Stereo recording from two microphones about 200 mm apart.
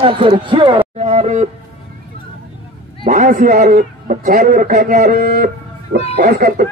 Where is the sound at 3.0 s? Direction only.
40° right (ahead or behind).